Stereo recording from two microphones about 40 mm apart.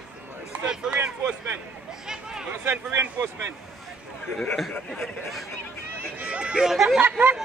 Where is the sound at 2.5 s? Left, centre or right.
Right.